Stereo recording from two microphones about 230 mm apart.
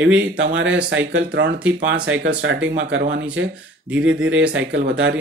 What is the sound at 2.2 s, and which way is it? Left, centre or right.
Speech, right.